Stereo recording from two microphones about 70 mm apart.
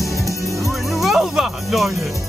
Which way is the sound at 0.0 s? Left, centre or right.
Centre.